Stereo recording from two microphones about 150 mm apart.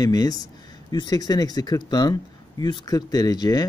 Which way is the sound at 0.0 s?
25° left (ahead or behind).